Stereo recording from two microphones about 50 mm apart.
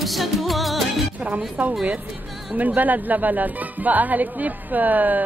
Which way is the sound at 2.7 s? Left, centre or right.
Right.